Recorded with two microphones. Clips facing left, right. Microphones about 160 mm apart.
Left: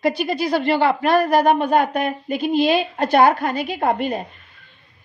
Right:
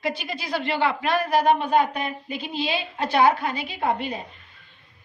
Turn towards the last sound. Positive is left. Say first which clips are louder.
# left 5 dB
turn(degrees=50)  # may be behind; listen again after turning